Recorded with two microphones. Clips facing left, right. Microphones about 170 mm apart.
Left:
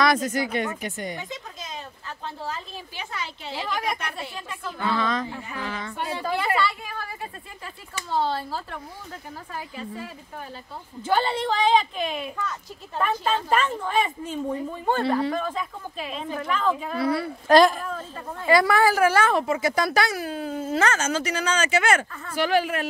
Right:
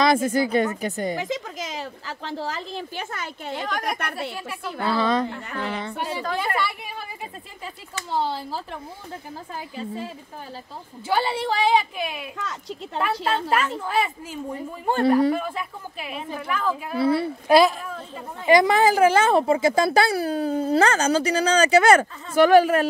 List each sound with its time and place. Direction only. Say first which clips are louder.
0.0 s a woman's voice: right 3 dB; 25° right (ahead or behind)
1.1 s speech: right 8 dB; 90° right
3.0 s a woman's voice: right 2 dB; 50° right (ahead or behind)
3.5 s speech: even; centre (ahead or behind)
4.0 s a woman's voice: right 4 dB; 60° right (ahead or behind)
4.7 s a woman's voice: right 4 dB; 30° right (ahead or behind)
5.4 s a woman's voice: right 3 dB; 60° right (ahead or behind)
6.6 s a woman's voice: left 2 dB; 15° right (ahead or behind)
9.8 s a woman's voice: right 7 dB; 25° right (ahead or behind)
11.0 s a woman's voice: even; 10° right (ahead or behind)
17.0 s a woman's voice: right 5 dB; 25° right (ahead or behind)
17.5 s speech: even; 5° right (ahead or behind)
18.4 s a woman's voice: right 2 dB; 20° right (ahead or behind); by 22.0 s 35° right (ahead or behind)
22.3 s a woman's voice: right 8 dB; 50° right (ahead or behind)